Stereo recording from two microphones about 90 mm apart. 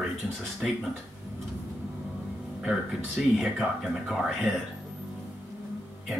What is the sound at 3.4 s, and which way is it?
Speech, 5° right (ahead or behind).